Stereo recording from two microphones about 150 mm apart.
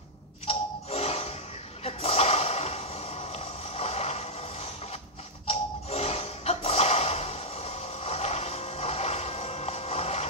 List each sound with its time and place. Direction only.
0.5 s music: 45° left (ahead or behind)
1.9 s a sound: 40° left (ahead or behind)
5.5 s music: 45° left (ahead or behind)